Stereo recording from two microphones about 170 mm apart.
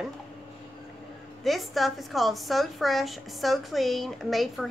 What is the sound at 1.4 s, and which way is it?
A woman's voice, centre (ahead or behind).